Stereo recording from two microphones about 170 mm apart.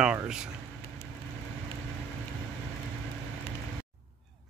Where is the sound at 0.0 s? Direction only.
5° right (ahead or behind).